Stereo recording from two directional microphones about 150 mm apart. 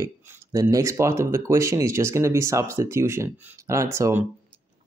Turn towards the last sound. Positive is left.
turn(degrees=-20)  # may be behind; listen again after turning